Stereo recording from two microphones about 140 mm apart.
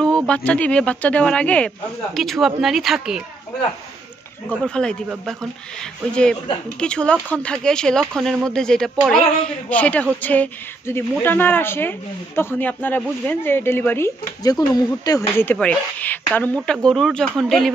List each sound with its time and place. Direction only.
0.3 s speech: 10° left (ahead or behind)
4.5 s speech: 5° left (ahead or behind)